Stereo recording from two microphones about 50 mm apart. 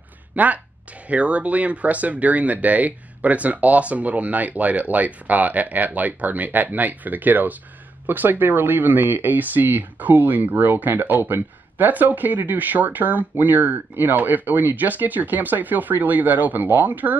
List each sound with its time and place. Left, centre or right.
0.3 s speech: right